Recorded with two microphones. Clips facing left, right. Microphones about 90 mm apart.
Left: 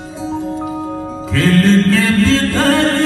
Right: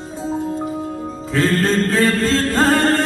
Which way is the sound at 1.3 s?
40° right (ahead or behind).